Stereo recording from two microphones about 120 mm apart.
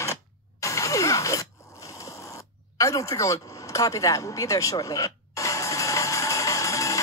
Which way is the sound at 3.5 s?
25° left (ahead or behind).